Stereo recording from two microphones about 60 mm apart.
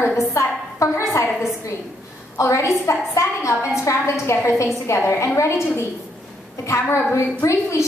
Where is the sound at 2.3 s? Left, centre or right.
Left.